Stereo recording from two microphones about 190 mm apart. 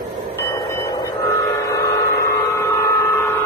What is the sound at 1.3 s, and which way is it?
Train, 15° left (ahead or behind).